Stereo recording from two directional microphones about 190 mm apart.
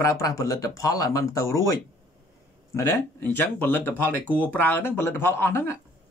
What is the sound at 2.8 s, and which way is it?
Speech, 10° left (ahead or behind).